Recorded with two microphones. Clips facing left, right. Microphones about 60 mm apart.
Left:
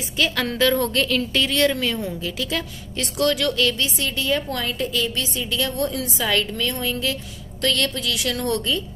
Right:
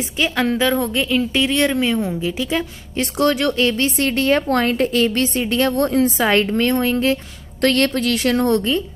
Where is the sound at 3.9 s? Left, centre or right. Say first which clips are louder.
Right 7 dB; right.